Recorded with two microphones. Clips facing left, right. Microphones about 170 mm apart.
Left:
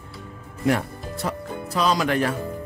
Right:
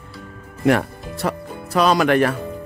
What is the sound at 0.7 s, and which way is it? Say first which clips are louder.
Speech: right 5 dB; 70° right (ahead or behind).